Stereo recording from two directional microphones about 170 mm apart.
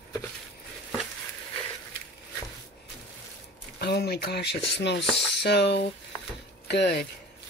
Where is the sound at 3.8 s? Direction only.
70° left (ahead or behind).